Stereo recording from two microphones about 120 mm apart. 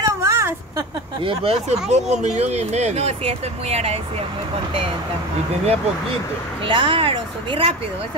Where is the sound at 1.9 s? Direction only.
70° right (ahead or behind).